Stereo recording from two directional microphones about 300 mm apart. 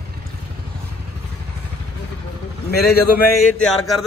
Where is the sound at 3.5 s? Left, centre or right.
Centre.